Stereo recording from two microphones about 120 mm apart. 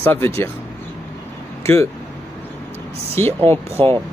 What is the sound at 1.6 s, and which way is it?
Speech, 20° left (ahead or behind).